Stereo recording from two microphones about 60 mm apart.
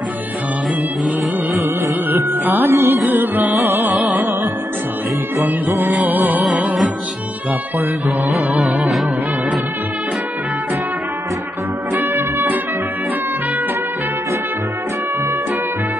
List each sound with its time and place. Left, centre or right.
2.6 s music: right
5.4 s music: centre
6.0 s music: right
6.4 s music: centre
8.3 s music: centre
12.0 s music: right